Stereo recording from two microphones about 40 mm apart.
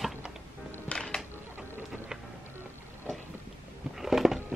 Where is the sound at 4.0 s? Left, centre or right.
Centre.